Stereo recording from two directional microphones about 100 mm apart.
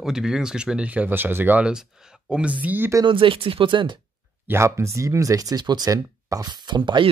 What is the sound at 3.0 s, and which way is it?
Speech, 60° right (ahead or behind).